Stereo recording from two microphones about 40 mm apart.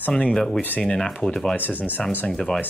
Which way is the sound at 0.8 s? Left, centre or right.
Centre.